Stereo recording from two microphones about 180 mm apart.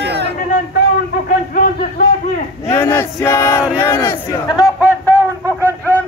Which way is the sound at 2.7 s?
10° left (ahead or behind).